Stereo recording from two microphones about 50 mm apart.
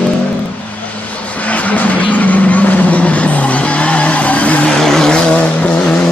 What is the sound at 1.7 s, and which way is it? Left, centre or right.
Vehicle, left.